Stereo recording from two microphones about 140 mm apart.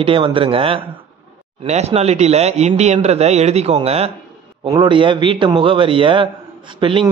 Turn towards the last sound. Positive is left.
turn(degrees=-40)  # may be behind; listen again after turning